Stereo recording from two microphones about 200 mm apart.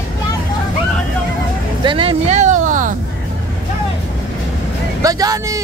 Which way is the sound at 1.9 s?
25° right (ahead or behind).